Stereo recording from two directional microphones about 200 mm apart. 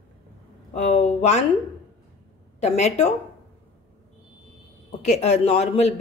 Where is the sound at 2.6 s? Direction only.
35° left (ahead or behind).